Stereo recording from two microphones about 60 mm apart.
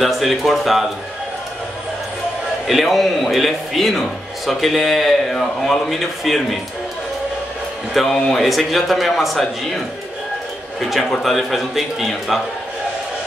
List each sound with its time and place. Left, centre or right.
0.0 s a man's voice: centre
2.6 s a man's voice: centre
7.9 s a man's voice: centre
10.9 s a man's voice: centre